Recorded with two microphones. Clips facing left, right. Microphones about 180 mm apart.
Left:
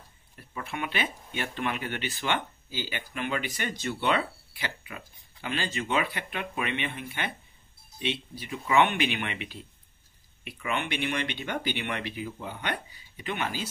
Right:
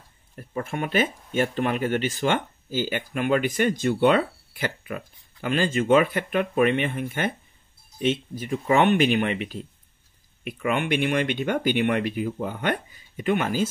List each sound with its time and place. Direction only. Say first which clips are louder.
0.4 s speech: right 6 dB; 45° right (ahead or behind)